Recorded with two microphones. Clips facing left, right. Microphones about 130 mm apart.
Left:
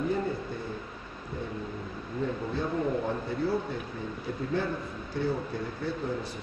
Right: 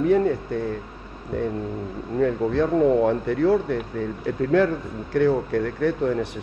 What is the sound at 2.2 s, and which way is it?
Speech, 90° right.